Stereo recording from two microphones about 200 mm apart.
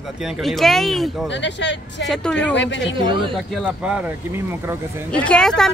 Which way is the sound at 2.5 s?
65° left (ahead or behind).